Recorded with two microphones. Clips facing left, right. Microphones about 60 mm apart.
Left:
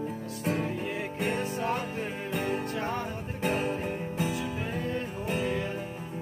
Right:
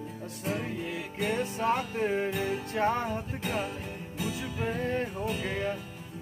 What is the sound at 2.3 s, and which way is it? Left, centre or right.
Music, left.